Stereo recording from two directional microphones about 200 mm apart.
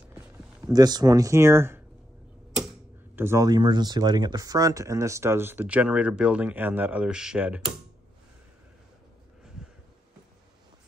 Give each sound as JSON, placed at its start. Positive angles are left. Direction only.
{"t": 0.1, "sound": "a sound", "side_deg": -5}
{"t": 0.7, "sound": "speech", "side_deg": -20}
{"t": 3.2, "sound": "speech", "side_deg": -15}